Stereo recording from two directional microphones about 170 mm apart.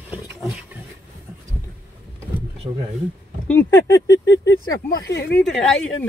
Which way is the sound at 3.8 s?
20° left (ahead or behind).